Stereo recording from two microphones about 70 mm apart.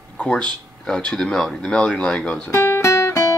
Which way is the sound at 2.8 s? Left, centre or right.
Left.